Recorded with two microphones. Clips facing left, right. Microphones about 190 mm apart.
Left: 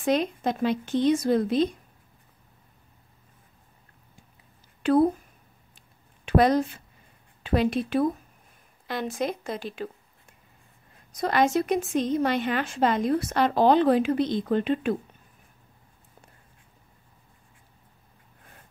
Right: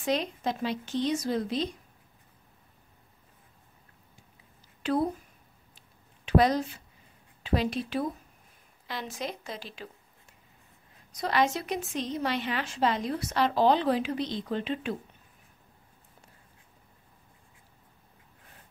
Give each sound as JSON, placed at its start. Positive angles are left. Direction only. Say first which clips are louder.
{"t": 0.0, "sound": "a woman's voice", "louder": "left 5 dB", "side_deg": 50}
{"t": 4.8, "sound": "a woman's voice", "louder": "left 7 dB", "side_deg": 50}
{"t": 6.2, "sound": "a woman's voice", "louder": "left 3 dB", "side_deg": 55}
{"t": 11.1, "sound": "a woman's voice", "louder": "left 4 dB", "side_deg": 50}